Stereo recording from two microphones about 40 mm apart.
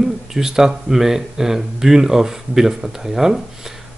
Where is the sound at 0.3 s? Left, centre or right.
Centre.